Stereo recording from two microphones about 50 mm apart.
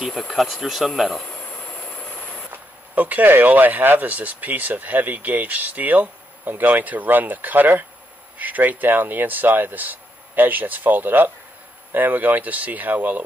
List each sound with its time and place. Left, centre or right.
0.3 s speech: centre
1.9 s vehicle: left
2.5 s speech: right